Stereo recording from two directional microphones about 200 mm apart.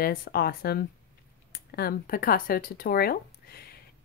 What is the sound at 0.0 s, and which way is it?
Speech, 45° left (ahead or behind).